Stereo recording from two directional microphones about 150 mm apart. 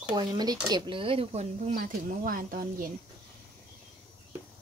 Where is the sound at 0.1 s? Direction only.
30° right (ahead or behind); by 1.8 s 45° right (ahead or behind).